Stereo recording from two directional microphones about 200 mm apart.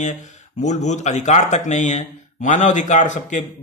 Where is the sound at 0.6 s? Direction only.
35° left (ahead or behind).